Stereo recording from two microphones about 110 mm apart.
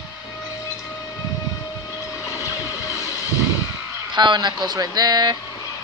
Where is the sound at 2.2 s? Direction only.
30° left (ahead or behind).